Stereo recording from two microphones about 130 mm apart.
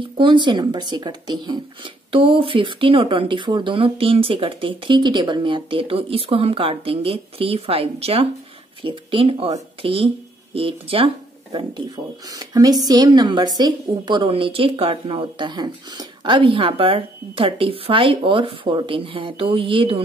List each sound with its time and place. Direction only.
0.0 s speech: 40° right (ahead or behind)
12.3 s speech: 30° right (ahead or behind)